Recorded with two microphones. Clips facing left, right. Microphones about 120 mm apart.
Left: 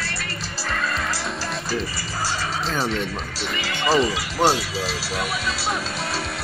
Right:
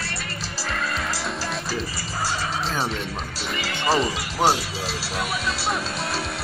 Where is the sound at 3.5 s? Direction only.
Centre (ahead or behind).